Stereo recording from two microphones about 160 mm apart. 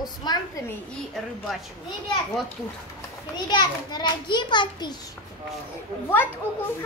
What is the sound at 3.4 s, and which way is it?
A child's voice, 30° left (ahead or behind).